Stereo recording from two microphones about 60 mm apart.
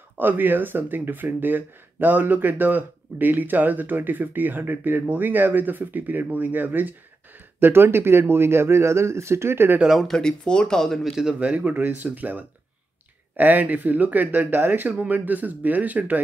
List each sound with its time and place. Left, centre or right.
0.2 s speech: right
10.0 s speech: centre
11.1 s speech: centre
11.3 s speech: right